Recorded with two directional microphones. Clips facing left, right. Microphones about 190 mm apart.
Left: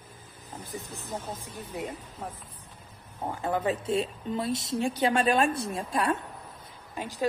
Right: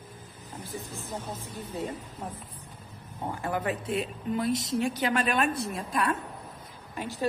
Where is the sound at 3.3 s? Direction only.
20° left (ahead or behind).